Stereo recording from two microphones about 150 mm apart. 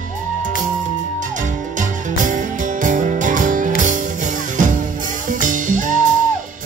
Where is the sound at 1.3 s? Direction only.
55° right (ahead or behind).